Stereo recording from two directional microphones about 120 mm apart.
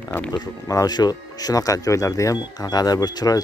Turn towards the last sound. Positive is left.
turn(degrees=35)  # may be behind; listen again after turning